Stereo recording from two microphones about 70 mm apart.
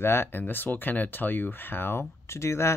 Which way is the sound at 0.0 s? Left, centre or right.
Left.